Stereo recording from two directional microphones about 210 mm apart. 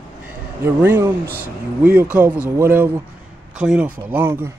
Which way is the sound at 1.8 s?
10° right (ahead or behind).